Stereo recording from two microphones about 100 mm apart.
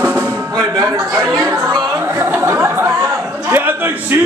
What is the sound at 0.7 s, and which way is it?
Speech, 35° right (ahead or behind).